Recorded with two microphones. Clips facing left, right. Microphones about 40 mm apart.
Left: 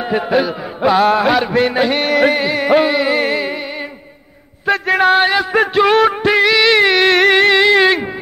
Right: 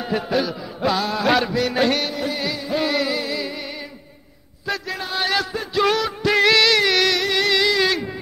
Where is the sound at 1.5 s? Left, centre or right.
Left.